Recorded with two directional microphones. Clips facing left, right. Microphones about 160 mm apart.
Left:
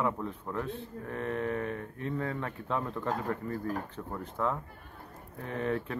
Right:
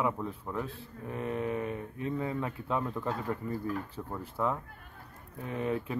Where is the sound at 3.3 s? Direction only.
15° right (ahead or behind).